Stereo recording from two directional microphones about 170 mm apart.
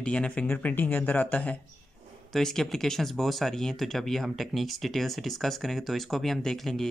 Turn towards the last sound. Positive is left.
turn(degrees=0)  # may be behind; listen again after turning